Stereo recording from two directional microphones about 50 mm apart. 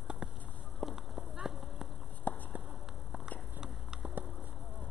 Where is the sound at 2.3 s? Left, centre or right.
Left.